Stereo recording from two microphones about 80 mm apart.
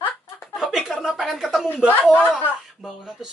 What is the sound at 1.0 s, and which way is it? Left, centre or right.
Speech, centre.